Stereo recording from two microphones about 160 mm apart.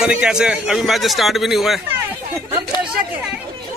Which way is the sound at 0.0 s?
5° right (ahead or behind).